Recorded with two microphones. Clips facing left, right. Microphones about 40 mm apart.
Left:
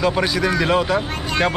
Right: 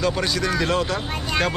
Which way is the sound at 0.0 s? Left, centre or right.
Centre.